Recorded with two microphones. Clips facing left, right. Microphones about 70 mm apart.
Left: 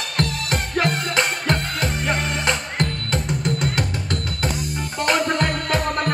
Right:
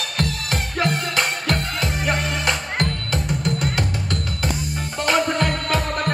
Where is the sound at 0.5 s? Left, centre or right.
Left.